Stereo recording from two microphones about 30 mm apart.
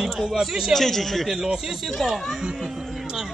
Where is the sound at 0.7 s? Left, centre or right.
Centre.